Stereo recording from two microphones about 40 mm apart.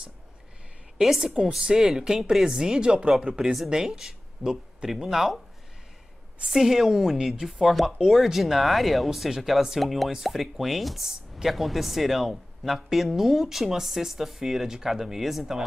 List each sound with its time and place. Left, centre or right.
0.9 s speech: centre
6.4 s speech: centre